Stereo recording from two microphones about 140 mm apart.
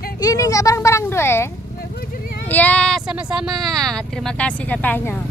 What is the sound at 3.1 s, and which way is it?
Speech, 5° right (ahead or behind).